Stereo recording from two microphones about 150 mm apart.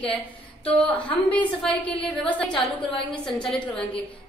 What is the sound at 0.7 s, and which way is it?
A woman's voice, 10° left (ahead or behind).